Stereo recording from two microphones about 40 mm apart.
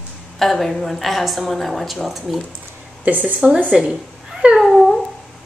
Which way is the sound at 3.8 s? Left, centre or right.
Centre.